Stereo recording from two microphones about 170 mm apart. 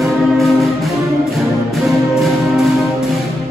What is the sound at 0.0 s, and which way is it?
Music, centre (ahead or behind).